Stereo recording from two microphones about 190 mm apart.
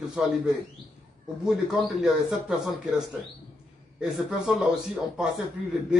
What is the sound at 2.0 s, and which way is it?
A man's voice, centre (ahead or behind).